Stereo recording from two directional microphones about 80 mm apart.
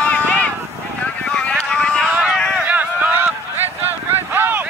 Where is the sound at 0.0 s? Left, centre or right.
Centre.